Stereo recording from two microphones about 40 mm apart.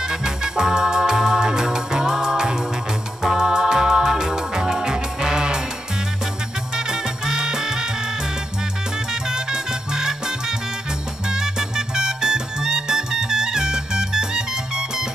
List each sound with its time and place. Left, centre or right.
0.1 s music: centre
6.9 s music: centre
9.3 s music: centre